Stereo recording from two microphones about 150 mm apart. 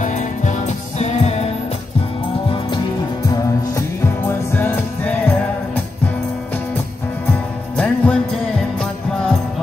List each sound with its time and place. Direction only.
0.0 s music: 55° left (ahead or behind)
4.6 s music: 10° left (ahead or behind)
7.7 s music: 10° left (ahead or behind)